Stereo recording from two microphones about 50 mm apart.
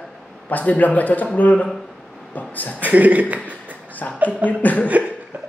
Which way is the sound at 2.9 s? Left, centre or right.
Right.